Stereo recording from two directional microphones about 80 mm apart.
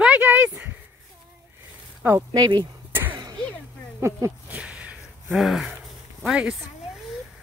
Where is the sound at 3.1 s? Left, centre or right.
Right.